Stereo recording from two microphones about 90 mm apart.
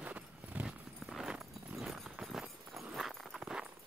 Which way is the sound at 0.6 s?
5° right (ahead or behind).